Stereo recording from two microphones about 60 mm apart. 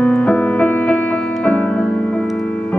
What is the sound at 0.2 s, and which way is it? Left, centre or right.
Music, left.